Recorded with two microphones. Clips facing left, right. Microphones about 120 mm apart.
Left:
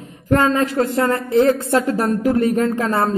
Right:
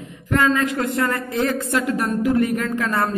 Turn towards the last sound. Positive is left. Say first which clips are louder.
# left 4 dB
turn(degrees=30)  # may be behind; listen again after turning